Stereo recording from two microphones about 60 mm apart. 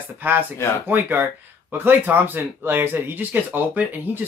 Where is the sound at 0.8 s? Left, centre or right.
Right.